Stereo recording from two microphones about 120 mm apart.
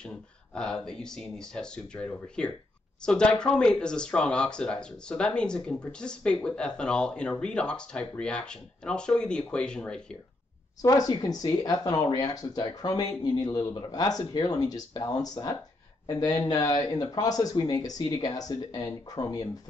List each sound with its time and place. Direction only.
0.6 s speech: 5° left (ahead or behind)
10.8 s speech: 30° left (ahead or behind)